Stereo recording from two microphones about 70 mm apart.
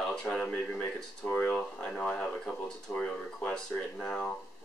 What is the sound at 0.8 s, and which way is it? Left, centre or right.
Speech, left.